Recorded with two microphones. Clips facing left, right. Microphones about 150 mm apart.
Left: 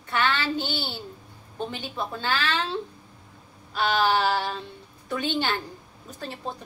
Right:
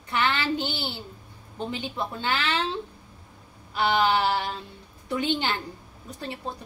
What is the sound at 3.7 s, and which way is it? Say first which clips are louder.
Speech: even; 20° right (ahead or behind).